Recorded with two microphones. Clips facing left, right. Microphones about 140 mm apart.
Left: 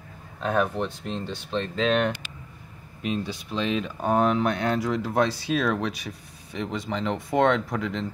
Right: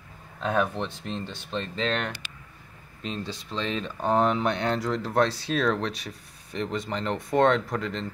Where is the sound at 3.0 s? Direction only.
10° left (ahead or behind).